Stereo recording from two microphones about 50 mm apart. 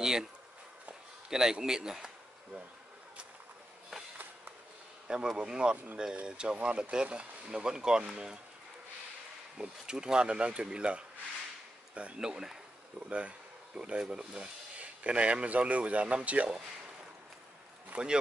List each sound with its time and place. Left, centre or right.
0.0 s speech: centre
1.3 s speech: centre
5.0 s speech: centre
9.6 s speech: centre
12.2 s speech: centre
13.7 s speech: centre
17.9 s speech: right